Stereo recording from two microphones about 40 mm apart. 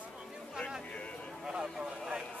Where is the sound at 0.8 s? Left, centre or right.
Left.